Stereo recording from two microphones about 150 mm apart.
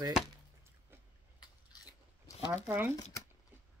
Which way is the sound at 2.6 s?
15° right (ahead or behind).